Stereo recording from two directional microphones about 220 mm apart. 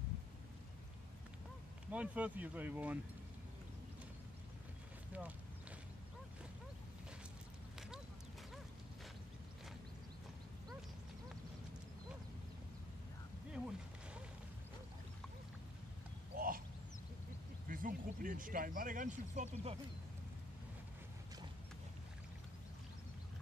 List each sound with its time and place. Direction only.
1.9 s speech: 5° right (ahead or behind)
13.5 s music: 5° right (ahead or behind)
16.3 s a sound: 40° right (ahead or behind)
17.6 s speech: 40° right (ahead or behind)